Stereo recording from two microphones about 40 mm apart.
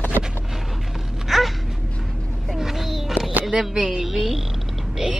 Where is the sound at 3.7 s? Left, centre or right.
Centre.